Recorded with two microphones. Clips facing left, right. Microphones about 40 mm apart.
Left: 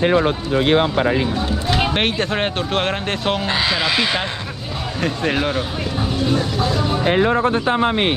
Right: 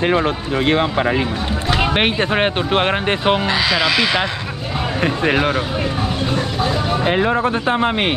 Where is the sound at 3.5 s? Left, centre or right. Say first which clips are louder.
Right 2 dB; right.